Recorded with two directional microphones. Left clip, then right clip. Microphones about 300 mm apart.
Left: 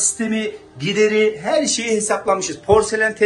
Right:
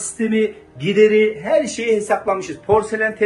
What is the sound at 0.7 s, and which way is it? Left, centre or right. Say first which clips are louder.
Speech: right 3 dB; left.